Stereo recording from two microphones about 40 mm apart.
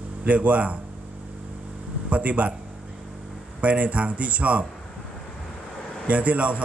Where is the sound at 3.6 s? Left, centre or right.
Right.